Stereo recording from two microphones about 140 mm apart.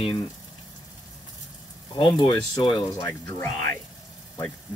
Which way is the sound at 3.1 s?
20° left (ahead or behind).